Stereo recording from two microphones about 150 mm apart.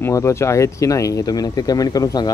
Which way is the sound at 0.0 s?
20° left (ahead or behind).